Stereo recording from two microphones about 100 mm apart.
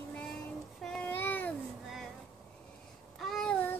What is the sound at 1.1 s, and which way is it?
Babbling, 20° left (ahead or behind).